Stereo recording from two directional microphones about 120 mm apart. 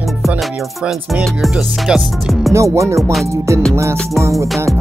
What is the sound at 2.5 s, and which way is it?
Music, 25° right (ahead or behind).